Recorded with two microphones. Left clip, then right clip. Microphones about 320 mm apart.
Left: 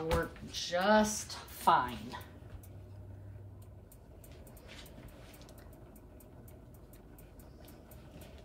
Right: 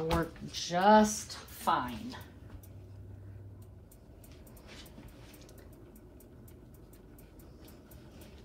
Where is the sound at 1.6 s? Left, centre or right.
Centre.